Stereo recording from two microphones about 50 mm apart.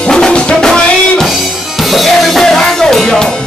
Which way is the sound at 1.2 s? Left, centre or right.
Centre.